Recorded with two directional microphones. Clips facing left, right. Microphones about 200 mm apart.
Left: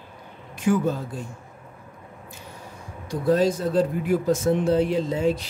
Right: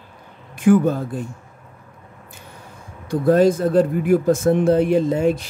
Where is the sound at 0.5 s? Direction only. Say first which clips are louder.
Right 7 dB; 55° right (ahead or behind).